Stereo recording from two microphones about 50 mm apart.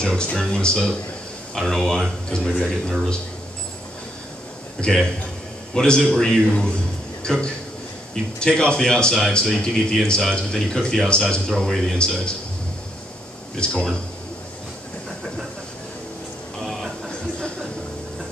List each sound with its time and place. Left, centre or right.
0.0 s a man's voice: centre
4.7 s a man's voice: centre
8.1 s a man's voice: centre
13.6 s a man's voice: centre